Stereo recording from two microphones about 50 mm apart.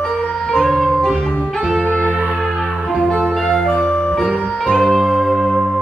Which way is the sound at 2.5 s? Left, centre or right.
Right.